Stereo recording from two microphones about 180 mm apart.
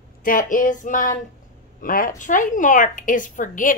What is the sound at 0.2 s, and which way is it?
Speech, 50° left (ahead or behind).